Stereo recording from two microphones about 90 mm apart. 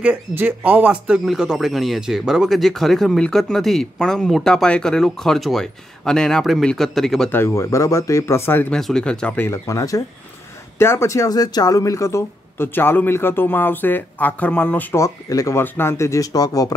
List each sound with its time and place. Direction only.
0.3 s speech: 20° right (ahead or behind)
1.2 s speech: 5° right (ahead or behind)
7.2 s speech: 25° left (ahead or behind)
7.5 s speech: 35° left (ahead or behind)
8.6 s speech: 5° left (ahead or behind)
9.5 s speech: 35° left (ahead or behind); by 15.0 s 20° left (ahead or behind)
15.0 s speech: 40° left (ahead or behind)